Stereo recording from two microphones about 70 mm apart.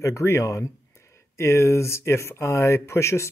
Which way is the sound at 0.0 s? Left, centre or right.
Left.